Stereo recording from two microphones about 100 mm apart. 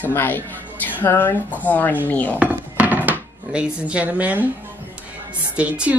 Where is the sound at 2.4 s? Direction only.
15° right (ahead or behind).